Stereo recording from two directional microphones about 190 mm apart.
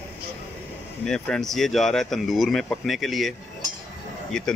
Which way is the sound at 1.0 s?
5° left (ahead or behind).